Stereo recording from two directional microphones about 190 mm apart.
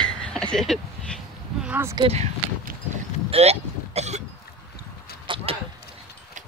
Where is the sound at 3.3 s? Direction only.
35° right (ahead or behind).